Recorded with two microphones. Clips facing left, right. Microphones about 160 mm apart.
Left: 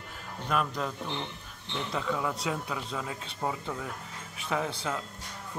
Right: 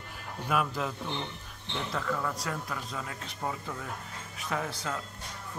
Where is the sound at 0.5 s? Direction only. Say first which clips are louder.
Even; 5° right (ahead or behind).